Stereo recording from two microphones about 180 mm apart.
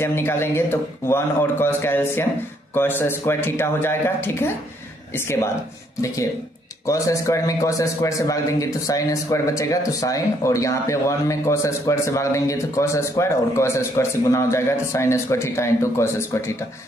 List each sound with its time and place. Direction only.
0.0 s a man's voice: 15° left (ahead or behind)
6.9 s a man's voice: 20° left (ahead or behind)